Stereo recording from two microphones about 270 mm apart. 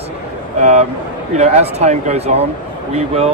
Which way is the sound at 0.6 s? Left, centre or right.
Right.